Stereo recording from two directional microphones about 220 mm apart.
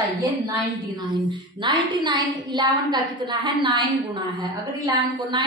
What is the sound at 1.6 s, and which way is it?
A woman's voice, 20° right (ahead or behind).